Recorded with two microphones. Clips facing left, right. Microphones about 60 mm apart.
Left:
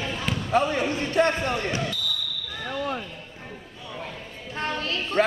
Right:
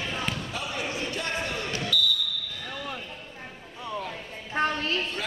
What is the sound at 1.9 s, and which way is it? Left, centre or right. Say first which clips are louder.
Basketball bounce: right 6 dB; left.